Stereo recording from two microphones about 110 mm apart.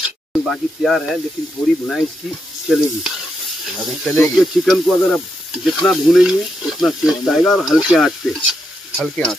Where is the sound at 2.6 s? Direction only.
Centre (ahead or behind).